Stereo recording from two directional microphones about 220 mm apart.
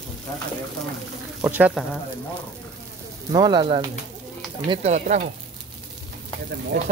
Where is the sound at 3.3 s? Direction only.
20° right (ahead or behind).